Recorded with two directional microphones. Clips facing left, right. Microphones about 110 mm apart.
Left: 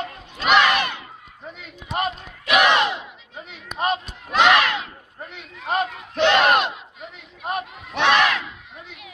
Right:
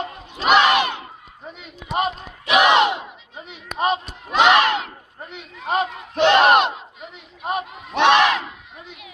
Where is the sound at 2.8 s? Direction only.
40° right (ahead or behind).